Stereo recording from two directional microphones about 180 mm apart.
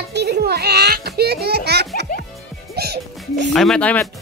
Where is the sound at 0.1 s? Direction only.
65° right (ahead or behind).